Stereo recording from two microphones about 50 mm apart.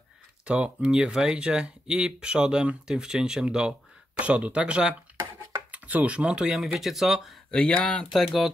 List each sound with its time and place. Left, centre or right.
0.5 s speech: right
4.2 s speech: right
5.7 s speech: right
6.4 s speech: centre
7.5 s speech: left